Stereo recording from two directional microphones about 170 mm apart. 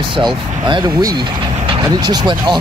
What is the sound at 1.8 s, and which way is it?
Speech, 25° right (ahead or behind).